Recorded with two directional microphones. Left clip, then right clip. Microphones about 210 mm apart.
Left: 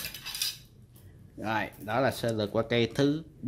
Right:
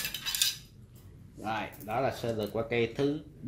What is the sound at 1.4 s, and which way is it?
Speech, 50° left (ahead or behind).